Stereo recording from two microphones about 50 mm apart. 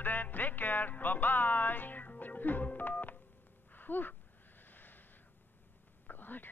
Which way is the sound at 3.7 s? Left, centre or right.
Left.